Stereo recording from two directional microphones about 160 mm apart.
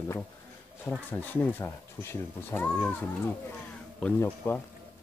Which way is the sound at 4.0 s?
10° left (ahead or behind).